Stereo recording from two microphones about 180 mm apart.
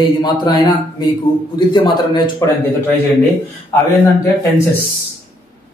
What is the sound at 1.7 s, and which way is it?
Speech, 25° left (ahead or behind).